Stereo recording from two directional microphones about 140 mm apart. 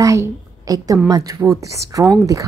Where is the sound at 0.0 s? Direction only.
25° right (ahead or behind).